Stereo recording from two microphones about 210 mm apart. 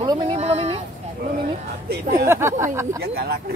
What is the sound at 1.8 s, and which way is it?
Speech, 50° right (ahead or behind).